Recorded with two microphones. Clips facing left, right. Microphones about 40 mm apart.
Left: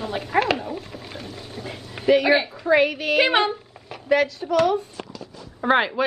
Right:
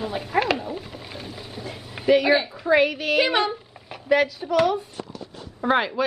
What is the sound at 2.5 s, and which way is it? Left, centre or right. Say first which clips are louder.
Speech: left 1 dB; centre.